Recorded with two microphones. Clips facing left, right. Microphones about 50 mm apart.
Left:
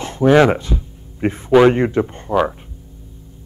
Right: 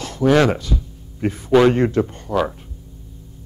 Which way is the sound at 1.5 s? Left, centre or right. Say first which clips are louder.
Left 2 dB; centre.